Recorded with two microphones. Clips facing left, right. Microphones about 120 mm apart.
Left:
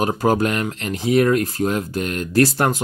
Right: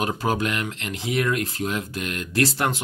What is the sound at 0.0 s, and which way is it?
Speech, 40° left (ahead or behind).